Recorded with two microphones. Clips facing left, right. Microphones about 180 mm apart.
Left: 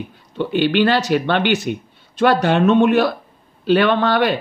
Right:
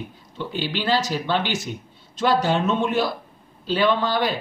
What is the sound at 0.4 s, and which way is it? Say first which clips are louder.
Speech: left 11 dB; 65° left (ahead or behind).